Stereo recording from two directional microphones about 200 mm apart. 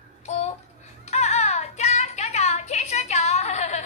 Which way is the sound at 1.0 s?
35° left (ahead or behind).